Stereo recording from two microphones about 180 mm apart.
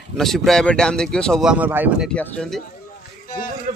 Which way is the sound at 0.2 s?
Centre (ahead or behind).